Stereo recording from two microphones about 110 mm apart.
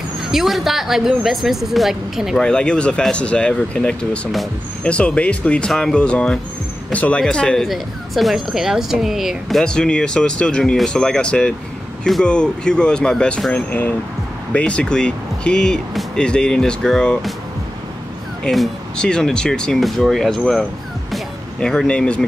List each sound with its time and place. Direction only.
0.3 s speech: centre (ahead or behind)
2.4 s speech: 10° left (ahead or behind)
18.4 s speech: 5° left (ahead or behind)
21.1 s vehicle: 5° left (ahead or behind)